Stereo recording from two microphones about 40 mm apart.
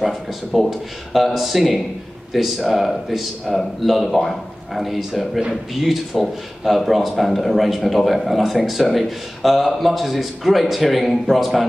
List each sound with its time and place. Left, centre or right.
0.0 s a man's voice: centre